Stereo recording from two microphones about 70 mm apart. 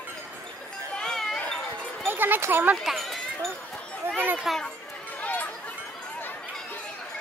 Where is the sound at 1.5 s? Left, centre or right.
Centre.